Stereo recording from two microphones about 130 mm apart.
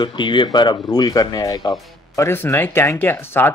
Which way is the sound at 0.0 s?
35° left (ahead or behind).